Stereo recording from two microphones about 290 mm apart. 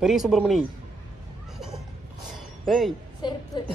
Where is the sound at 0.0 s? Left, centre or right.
Centre.